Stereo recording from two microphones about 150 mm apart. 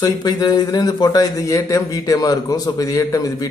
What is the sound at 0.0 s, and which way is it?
A man's voice, 25° left (ahead or behind).